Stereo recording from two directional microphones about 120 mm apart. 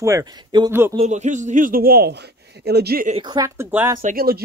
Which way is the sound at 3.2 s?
35° right (ahead or behind).